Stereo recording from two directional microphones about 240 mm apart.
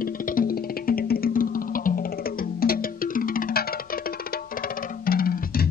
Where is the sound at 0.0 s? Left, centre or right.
Left.